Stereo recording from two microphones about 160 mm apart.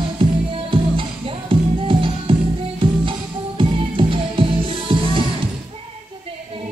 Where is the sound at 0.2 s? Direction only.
35° right (ahead or behind).